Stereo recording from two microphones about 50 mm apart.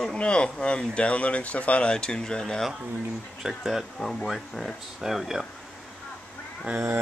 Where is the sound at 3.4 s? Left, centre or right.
Centre.